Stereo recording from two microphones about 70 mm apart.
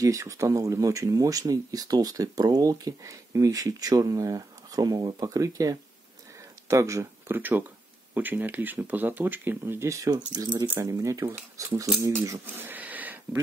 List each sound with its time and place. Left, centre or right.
0.0 s speech: right
6.7 s speech: right
7.2 s speech: right
9.8 s speech: right
10.1 s speech: right
10.8 s speech: right
12.6 s a sound: right